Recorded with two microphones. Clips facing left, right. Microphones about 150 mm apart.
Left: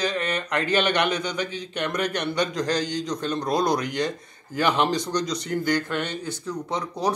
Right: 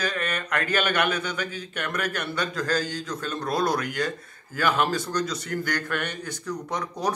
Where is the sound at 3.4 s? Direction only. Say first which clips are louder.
Left 1 dB; 15° left (ahead or behind).